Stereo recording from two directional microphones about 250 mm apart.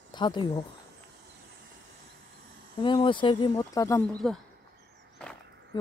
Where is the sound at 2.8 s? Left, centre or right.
Centre.